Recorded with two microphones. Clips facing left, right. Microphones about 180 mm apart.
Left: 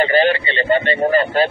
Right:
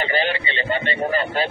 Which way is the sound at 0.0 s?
45° left (ahead or behind).